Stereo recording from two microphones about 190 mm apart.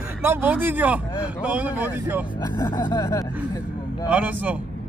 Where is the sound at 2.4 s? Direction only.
15° left (ahead or behind).